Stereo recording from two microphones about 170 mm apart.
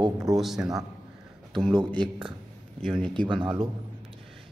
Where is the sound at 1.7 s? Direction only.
25° right (ahead or behind).